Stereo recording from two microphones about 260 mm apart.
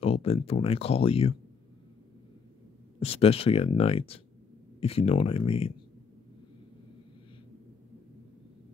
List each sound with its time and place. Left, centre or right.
0.0 s speech: left
3.0 s speech: left